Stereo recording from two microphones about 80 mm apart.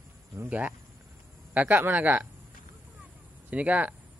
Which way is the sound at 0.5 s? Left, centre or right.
Right.